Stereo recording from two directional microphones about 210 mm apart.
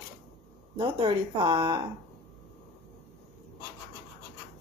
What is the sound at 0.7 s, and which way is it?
Speech, 25° right (ahead or behind).